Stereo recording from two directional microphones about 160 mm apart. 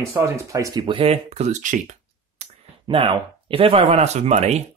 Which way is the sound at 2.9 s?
35° right (ahead or behind).